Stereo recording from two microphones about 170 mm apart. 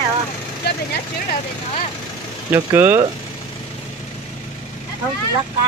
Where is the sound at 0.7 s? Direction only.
75° left (ahead or behind).